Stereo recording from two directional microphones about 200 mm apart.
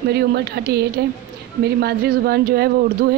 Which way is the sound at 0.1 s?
55° right (ahead or behind).